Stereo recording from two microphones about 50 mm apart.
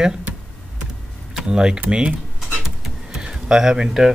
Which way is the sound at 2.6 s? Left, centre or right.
Centre.